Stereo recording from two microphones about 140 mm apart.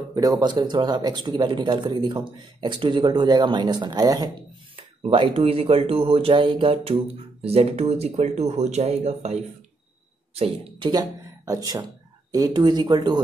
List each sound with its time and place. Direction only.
0.1 s speech: 25° right (ahead or behind); by 10.9 s 45° right (ahead or behind)
11.4 s speech: 25° right (ahead or behind)